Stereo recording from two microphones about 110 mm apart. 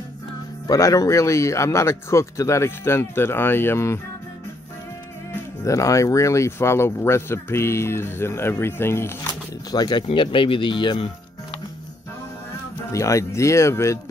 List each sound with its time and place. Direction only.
0.7 s speech: 30° left (ahead or behind)
5.3 s speech: 30° left (ahead or behind)
9.7 s speech: 35° left (ahead or behind)
10.0 s speech: 50° left (ahead or behind)
12.9 s speech: 30° left (ahead or behind)